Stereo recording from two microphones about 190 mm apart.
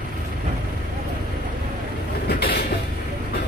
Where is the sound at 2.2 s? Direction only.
55° left (ahead or behind).